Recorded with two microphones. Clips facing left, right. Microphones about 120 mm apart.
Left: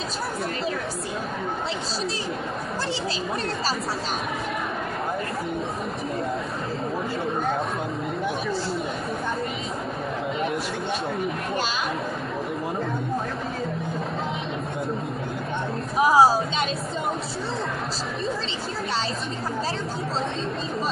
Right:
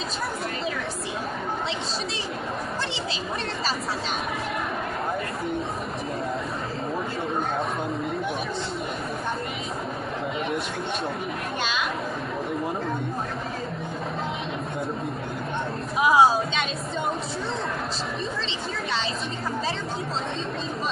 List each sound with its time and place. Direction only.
16.0 s speech: 35° left (ahead or behind)